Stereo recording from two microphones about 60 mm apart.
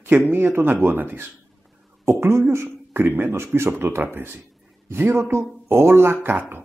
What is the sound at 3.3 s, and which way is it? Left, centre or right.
Speech, right.